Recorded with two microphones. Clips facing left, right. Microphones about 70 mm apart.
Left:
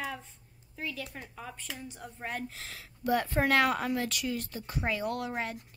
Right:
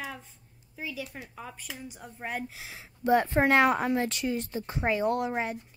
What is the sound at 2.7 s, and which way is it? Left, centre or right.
Speech, right.